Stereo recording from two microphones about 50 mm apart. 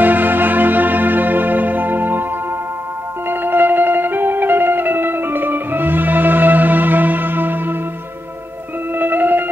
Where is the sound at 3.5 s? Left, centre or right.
Right.